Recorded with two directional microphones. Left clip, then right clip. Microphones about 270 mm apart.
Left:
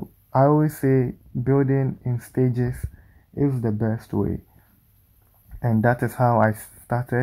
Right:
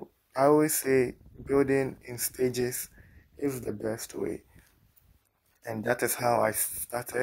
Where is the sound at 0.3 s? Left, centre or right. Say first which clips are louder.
Left 4 dB; right.